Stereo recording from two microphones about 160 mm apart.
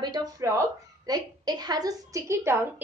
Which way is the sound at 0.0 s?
25° right (ahead or behind).